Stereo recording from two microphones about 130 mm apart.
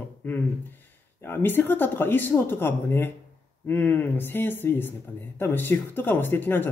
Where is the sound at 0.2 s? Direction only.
15° left (ahead or behind).